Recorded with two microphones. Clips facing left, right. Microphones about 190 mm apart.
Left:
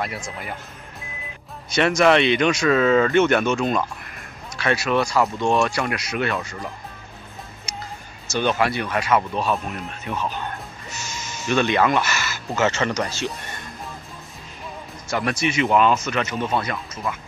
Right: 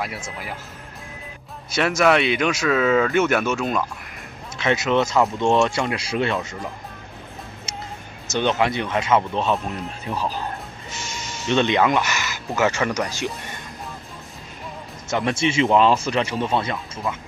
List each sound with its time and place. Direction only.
0.0 s speech: centre (ahead or behind)
1.7 s speech: 5° right (ahead or behind)
4.6 s speech: 20° right (ahead or behind)
7.7 s music: 25° right (ahead or behind)
8.3 s speech: 20° right (ahead or behind)
11.4 s speech: 25° right (ahead or behind)
15.0 s speech: 25° right (ahead or behind)
17.1 s speech: 15° right (ahead or behind)